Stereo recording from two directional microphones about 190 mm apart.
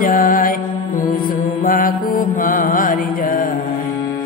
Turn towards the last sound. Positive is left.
turn(degrees=45)  # may be behind; listen again after turning